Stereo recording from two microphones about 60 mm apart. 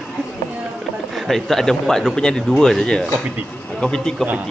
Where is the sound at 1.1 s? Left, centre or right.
Centre.